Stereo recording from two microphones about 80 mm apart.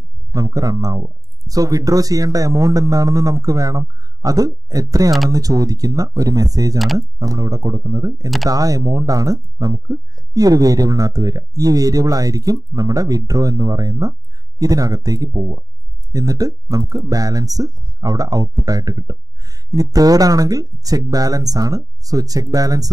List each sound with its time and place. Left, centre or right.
0.3 s speech: right